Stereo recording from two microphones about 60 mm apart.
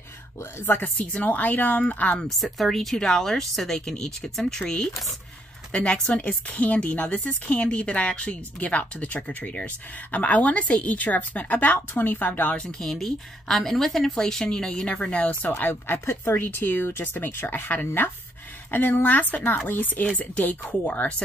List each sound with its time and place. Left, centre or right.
0.4 s speech: left
1.1 s speech: left
2.2 s a woman's voice: centre; by 12.6 s left
12.7 s a woman's voice: centre; by 21.1 s left